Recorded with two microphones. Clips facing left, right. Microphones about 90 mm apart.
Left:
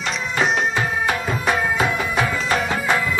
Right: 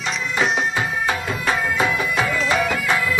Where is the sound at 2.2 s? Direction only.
20° left (ahead or behind).